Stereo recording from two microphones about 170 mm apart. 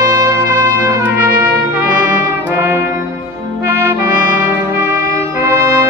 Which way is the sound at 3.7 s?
15° right (ahead or behind).